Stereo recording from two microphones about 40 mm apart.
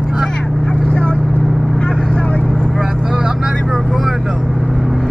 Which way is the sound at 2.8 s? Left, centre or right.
Centre.